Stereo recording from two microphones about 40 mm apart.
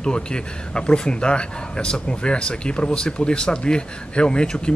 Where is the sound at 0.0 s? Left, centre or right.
Left.